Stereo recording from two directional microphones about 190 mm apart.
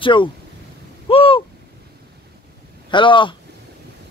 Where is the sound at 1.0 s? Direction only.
30° left (ahead or behind).